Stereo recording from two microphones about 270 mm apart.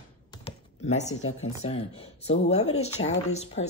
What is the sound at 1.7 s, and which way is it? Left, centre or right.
Speech, left.